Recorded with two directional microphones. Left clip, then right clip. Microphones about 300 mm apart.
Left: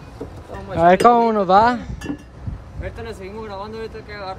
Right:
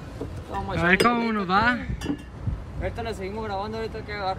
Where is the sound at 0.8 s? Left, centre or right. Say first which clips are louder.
Left 9 dB; centre.